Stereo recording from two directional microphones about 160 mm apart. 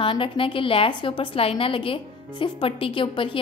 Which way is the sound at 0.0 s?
35° left (ahead or behind).